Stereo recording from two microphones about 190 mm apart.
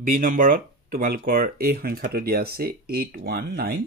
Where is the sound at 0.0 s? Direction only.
45° right (ahead or behind).